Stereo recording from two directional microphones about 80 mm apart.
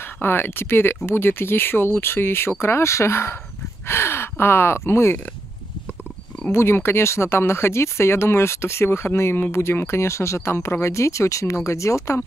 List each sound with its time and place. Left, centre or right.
0.0 s speech: left
6.5 s speech: left